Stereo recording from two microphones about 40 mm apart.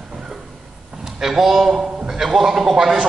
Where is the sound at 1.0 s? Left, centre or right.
Centre.